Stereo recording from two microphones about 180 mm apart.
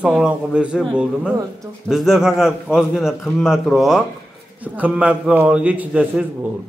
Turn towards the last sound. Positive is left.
turn(degrees=-5)  # may be behind; listen again after turning